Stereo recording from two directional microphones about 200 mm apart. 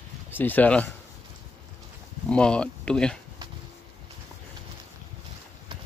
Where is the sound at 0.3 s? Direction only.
10° left (ahead or behind).